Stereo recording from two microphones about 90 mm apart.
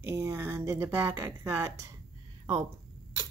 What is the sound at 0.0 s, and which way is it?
Speech, 25° right (ahead or behind).